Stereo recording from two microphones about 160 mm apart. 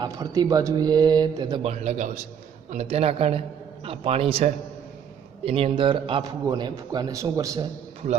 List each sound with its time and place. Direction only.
0.0 s a man's voice: 25° right (ahead or behind)
1.6 s a man's voice: 45° right (ahead or behind); by 7.6 s 20° right (ahead or behind)